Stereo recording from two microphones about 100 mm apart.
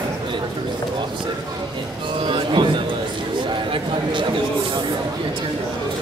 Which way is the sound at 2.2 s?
55° right (ahead or behind).